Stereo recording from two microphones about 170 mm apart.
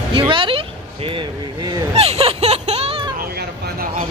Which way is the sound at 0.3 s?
30° right (ahead or behind).